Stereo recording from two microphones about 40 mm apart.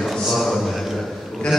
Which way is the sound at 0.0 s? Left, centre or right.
Centre.